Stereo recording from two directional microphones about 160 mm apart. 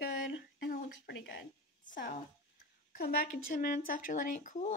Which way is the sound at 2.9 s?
65° left (ahead or behind).